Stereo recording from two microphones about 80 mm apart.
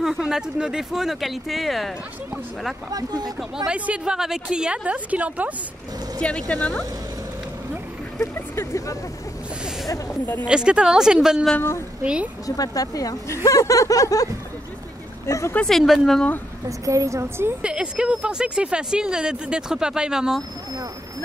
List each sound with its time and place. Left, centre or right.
0.0 s speech: centre
2.9 s speech: right
3.3 s speech: centre
6.2 s speech: centre
10.4 s speech: centre
12.4 s speech: left
15.6 s speech: centre
16.6 s a woman's voice: right
17.6 s speech: centre